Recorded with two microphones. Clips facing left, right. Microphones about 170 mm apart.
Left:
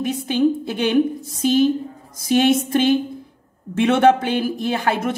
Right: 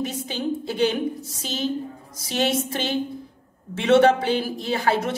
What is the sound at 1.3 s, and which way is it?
A woman's voice, 55° left (ahead or behind).